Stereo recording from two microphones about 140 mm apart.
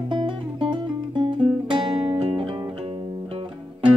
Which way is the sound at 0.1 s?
35° right (ahead or behind).